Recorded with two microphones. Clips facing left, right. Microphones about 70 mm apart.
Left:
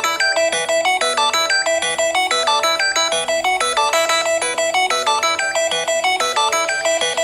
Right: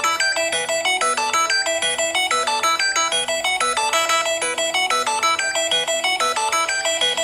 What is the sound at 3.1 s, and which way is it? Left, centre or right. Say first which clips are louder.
Music: left 5 dB; left.